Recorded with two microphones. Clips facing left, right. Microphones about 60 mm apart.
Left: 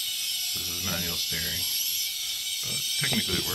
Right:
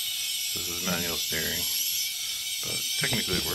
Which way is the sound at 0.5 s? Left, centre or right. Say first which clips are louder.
Right 4 dB; centre.